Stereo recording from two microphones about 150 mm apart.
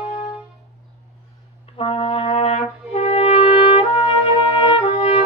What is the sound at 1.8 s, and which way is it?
Brass instrument, 40° left (ahead or behind).